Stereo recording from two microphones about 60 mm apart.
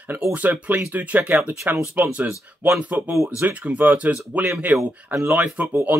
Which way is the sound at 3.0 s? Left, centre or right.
Right.